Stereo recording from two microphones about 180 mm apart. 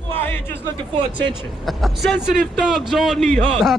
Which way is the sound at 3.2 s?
40° right (ahead or behind).